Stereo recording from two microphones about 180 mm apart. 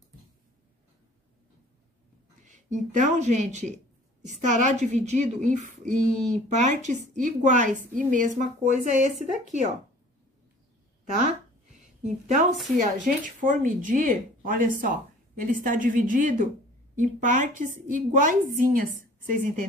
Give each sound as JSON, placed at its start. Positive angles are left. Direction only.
{"t": 2.4, "sound": "speech", "side_deg": -40}
{"t": 12.0, "sound": "speech", "side_deg": -40}